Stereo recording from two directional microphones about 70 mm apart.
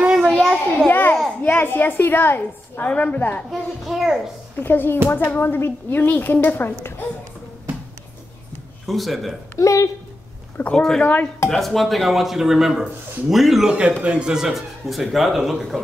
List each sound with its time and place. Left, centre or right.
0.0 s children playing: centre
0.8 s a sound: left
1.4 s a woman's voice: left
3.4 s speech: centre
4.6 s a woman's voice: left
8.8 s speech: centre
9.6 s speech: left
10.7 s speech: centre